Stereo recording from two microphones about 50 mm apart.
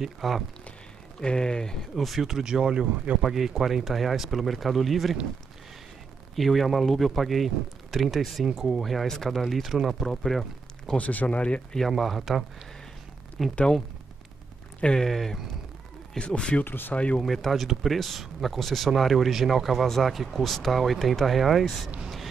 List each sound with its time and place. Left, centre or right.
0.0 s speech: centre
1.2 s speech: centre
2.0 s speech: centre
6.3 s speech: centre
11.0 s speech: left
12.0 s speech: centre
14.8 s speech: centre
15.0 s speech: centre
16.2 s speech: centre
16.6 s speech: left
16.9 s speech: left
17.2 s speech: centre